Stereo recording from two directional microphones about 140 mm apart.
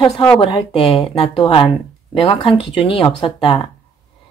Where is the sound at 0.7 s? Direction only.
45° left (ahead or behind).